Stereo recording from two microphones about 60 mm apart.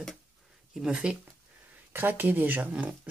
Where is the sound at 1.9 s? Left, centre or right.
Right.